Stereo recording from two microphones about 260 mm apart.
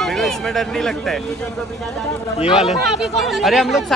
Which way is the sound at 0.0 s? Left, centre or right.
Centre.